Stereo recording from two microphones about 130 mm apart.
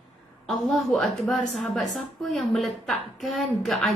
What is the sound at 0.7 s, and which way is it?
A woman's voice, centre (ahead or behind).